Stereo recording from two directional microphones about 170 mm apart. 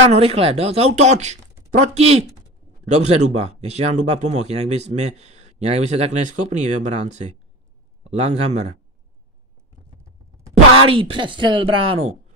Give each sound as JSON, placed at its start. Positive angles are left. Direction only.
{"t": 0.1, "sound": "a man's voice", "side_deg": -35}
{"t": 10.5, "sound": "speech", "side_deg": -30}